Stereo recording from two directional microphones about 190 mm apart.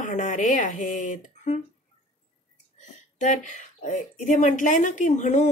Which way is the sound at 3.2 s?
40° left (ahead or behind).